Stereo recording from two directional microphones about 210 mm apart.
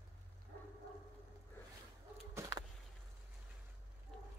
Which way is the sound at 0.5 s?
50° right (ahead or behind).